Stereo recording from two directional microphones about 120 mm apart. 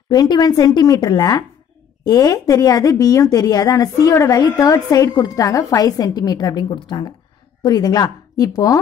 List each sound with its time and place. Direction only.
0.1 s a woman's voice: 35° left (ahead or behind)